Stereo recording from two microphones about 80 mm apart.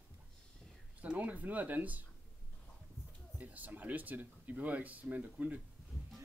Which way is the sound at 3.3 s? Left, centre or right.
Centre.